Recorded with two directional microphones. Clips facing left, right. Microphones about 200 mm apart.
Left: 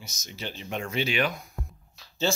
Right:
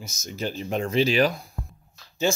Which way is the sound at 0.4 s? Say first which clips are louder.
Right 7 dB; 40° right (ahead or behind).